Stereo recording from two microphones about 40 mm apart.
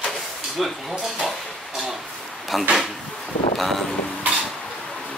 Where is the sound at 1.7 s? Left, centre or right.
Centre.